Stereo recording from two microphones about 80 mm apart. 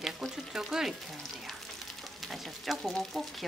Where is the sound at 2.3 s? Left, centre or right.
Centre.